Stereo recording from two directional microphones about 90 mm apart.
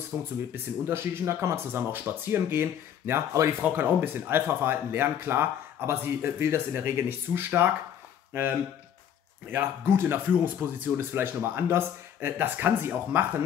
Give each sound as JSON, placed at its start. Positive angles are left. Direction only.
{"t": 0.1, "sound": "speech", "side_deg": -25}